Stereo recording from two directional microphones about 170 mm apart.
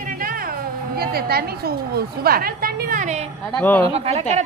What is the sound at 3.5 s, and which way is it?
Speech, 10° left (ahead or behind).